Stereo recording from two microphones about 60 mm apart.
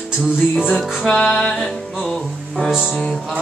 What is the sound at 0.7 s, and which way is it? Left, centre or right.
Music, centre.